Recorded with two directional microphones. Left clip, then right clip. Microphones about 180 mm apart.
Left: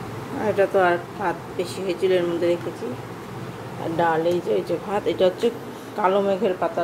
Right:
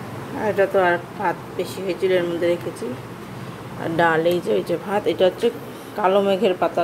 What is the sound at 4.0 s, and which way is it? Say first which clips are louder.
Speech: right 3 dB; 15° right (ahead or behind).